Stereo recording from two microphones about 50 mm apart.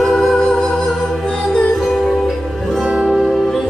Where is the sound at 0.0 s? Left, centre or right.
Centre.